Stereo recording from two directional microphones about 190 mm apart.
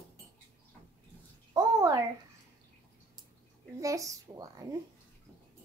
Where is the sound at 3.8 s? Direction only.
15° right (ahead or behind).